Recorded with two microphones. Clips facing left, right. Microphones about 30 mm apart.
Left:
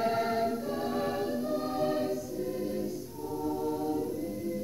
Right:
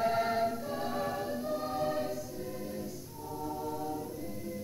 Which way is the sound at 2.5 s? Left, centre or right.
Centre.